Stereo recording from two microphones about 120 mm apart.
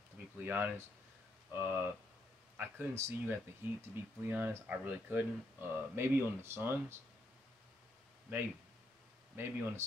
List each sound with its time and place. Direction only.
0.4 s speech: 15° right (ahead or behind)
9.3 s speech: 20° right (ahead or behind)